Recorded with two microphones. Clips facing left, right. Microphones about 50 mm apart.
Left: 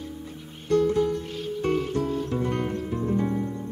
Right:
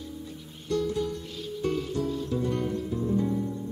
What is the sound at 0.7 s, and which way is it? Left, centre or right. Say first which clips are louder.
Music: left 6 dB; left.